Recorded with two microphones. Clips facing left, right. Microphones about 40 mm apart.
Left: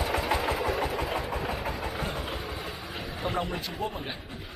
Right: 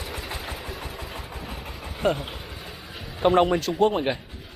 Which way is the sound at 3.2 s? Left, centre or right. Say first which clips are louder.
Right 13 dB; right.